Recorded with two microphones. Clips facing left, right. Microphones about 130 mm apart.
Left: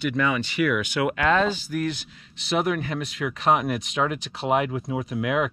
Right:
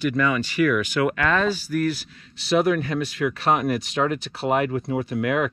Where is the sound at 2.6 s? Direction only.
10° left (ahead or behind).